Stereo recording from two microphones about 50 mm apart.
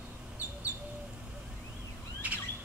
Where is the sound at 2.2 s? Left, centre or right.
Right.